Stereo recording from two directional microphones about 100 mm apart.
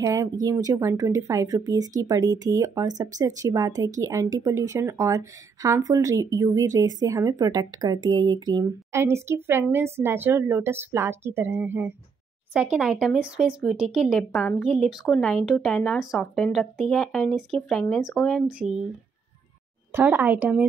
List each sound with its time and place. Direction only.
0.0 s speech: 35° right (ahead or behind)
8.9 s a woman's voice: 30° right (ahead or behind)
12.5 s speech: 10° right (ahead or behind)
19.9 s a woman's voice: 20° right (ahead or behind)